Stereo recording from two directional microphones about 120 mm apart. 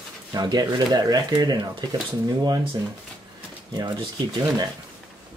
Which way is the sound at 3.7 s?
35° right (ahead or behind).